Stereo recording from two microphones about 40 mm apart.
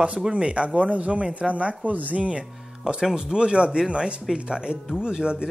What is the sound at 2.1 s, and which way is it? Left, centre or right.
Speech, right.